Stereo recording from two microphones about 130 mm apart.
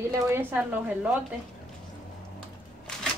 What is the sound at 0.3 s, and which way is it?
Speech, 15° right (ahead or behind).